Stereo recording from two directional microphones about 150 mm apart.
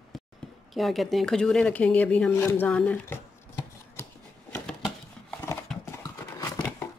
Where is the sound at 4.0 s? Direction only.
15° left (ahead or behind).